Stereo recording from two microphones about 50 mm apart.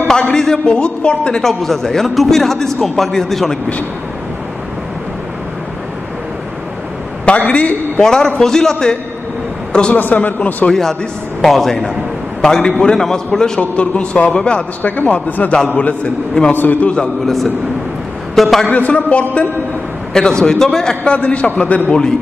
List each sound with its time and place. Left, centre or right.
0.3 s a man's voice: centre
1.4 s a man's voice: centre
7.2 s a man's voice: left
8.0 s a man's voice: centre
9.9 s a man's voice: left
10.7 s a man's voice: centre
13.6 s a man's voice: left
14.8 s a man's voice: left
16.8 s a man's voice: centre
18.3 s a man's voice: centre
18.7 s a man's voice: left
20.1 s a man's voice: centre
21.2 s a man's voice: left